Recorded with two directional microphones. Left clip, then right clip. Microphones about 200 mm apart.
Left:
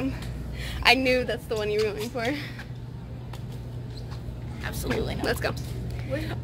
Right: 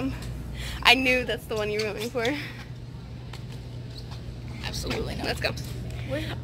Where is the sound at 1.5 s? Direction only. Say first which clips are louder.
Left 3 dB; 25° right (ahead or behind).